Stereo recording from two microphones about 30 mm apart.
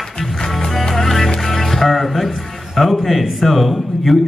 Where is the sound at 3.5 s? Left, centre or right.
Centre.